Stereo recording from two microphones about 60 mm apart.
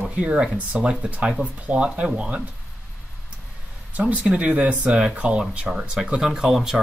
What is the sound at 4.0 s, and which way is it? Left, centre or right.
Speech, right.